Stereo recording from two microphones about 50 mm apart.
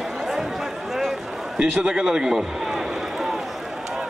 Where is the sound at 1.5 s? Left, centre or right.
Centre.